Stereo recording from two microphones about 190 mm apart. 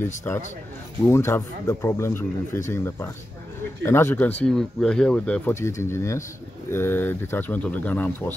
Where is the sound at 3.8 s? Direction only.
15° left (ahead or behind).